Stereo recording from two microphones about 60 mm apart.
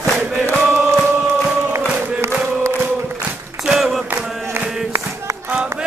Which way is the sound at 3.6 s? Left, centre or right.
Centre.